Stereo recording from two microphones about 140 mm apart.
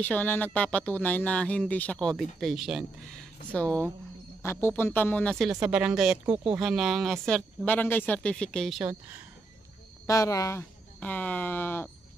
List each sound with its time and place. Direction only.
0.0 s speech: 10° left (ahead or behind)
10.0 s speech: 25° left (ahead or behind)
10.6 s speech: 10° left (ahead or behind)